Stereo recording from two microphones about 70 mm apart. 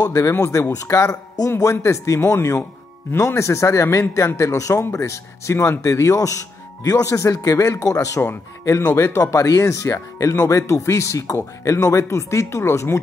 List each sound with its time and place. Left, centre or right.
0.0 s speech: left
8.8 s speech: left
9.3 s speech: left